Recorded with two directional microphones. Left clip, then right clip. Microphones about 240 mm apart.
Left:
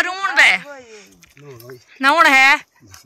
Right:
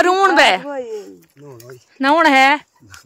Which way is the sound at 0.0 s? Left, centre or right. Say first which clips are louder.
Right 3 dB; right.